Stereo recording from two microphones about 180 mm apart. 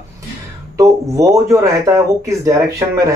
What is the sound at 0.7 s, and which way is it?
Speech, 20° right (ahead or behind).